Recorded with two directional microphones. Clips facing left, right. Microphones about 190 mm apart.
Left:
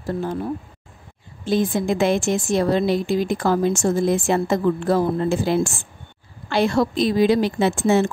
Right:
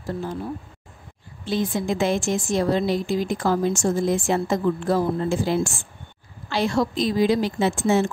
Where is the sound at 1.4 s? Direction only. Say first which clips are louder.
Left 4 dB; 50° left (ahead or behind).